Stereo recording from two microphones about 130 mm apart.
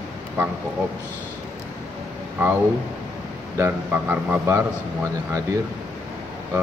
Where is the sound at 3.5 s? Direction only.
15° right (ahead or behind).